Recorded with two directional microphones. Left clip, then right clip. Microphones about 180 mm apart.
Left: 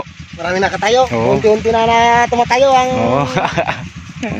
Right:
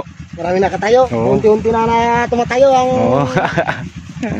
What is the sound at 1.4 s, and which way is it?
Speech, 40° right (ahead or behind).